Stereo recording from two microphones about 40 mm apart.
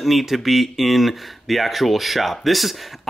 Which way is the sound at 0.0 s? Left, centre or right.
Centre.